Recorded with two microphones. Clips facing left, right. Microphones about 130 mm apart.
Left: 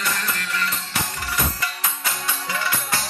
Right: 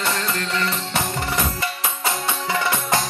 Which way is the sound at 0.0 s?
25° right (ahead or behind).